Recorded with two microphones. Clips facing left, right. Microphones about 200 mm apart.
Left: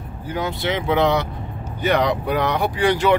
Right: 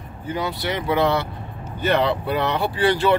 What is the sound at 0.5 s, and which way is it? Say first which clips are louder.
Speech: left 3 dB; 20° left (ahead or behind).